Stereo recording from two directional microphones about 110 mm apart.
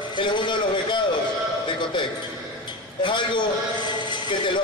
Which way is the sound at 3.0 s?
45° left (ahead or behind).